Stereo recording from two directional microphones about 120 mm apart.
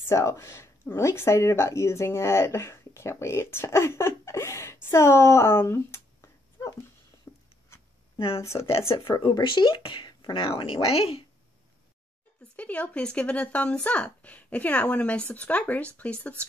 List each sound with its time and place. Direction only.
0.0 s speech: 25° left (ahead or behind)
7.3 s writing: 20° left (ahead or behind)
8.5 s speech: 55° left (ahead or behind)
9.1 s speech: 40° left (ahead or behind); by 11.2 s 55° left (ahead or behind)
12.5 s speech: 10° left (ahead or behind)